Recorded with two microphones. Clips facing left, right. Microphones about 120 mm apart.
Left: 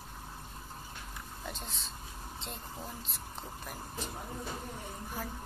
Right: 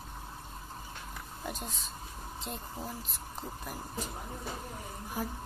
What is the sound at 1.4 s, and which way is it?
Speech, 5° right (ahead or behind).